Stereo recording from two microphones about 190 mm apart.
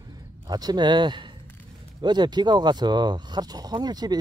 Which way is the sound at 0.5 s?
20° right (ahead or behind).